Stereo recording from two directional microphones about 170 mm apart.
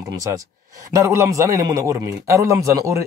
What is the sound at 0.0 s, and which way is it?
A man's voice, 20° right (ahead or behind).